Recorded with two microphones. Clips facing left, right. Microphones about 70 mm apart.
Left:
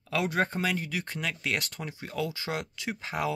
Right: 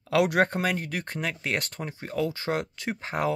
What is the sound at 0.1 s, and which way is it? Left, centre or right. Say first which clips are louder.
Speech: right 6 dB; right.